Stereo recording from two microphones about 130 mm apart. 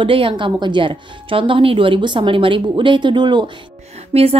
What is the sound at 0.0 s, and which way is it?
Speech, 45° right (ahead or behind).